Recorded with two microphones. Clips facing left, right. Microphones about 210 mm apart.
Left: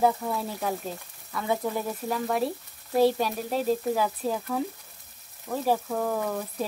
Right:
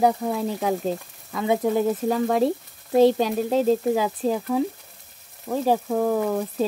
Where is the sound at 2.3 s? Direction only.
20° right (ahead or behind).